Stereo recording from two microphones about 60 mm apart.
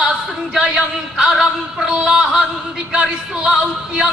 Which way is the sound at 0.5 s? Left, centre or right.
Centre.